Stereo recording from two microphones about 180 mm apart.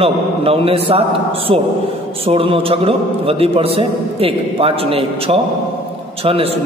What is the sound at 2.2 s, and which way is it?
A man's voice, 30° right (ahead or behind).